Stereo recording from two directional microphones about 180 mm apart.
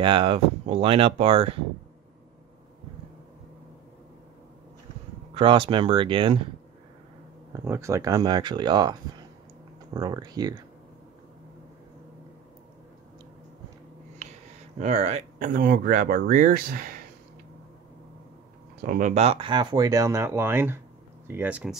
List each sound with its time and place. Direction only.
0.0 s speech: 30° right (ahead or behind)
5.3 s speech: 30° right (ahead or behind)
7.5 s speech: 15° right (ahead or behind)
9.9 s speech: 20° right (ahead or behind)
14.8 s speech: 40° right (ahead or behind)
18.8 s speech: 45° right (ahead or behind); by 21.7 s 5° right (ahead or behind)